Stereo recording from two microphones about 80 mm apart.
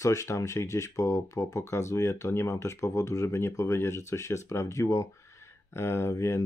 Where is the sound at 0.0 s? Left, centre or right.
Left.